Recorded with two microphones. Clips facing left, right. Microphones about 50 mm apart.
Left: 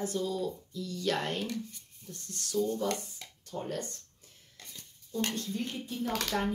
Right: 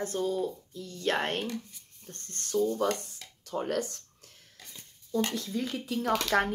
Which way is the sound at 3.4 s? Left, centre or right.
Right.